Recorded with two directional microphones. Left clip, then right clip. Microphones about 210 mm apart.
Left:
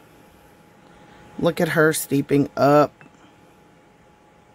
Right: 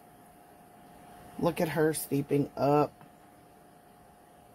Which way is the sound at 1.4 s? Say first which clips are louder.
Left 10 dB; 30° left (ahead or behind).